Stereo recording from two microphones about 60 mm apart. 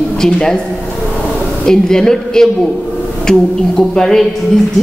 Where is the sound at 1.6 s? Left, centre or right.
Centre.